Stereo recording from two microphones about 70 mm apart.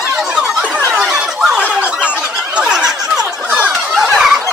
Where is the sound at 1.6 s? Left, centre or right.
Centre.